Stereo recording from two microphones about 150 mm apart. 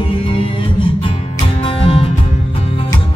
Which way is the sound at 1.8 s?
35° left (ahead or behind).